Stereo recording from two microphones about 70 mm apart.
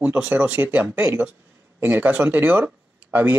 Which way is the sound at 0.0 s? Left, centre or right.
Right.